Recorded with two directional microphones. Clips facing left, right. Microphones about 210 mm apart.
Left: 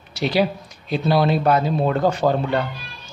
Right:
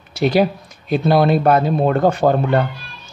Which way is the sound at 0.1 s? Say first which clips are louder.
Right 4 dB; 50° right (ahead or behind).